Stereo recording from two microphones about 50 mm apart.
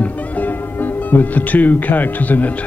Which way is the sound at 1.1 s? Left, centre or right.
Left.